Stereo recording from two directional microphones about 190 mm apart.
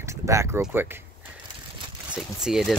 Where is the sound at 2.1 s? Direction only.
5° right (ahead or behind).